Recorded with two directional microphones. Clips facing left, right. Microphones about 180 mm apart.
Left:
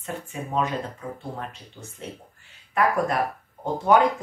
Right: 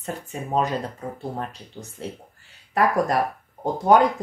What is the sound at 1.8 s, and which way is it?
Speech, 45° right (ahead or behind).